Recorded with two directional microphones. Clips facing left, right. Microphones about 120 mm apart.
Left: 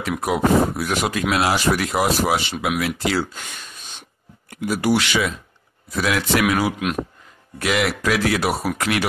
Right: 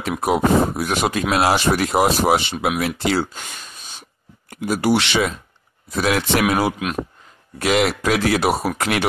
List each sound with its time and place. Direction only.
0.0 s speech: 25° right (ahead or behind)
4.5 s speech: 30° right (ahead or behind)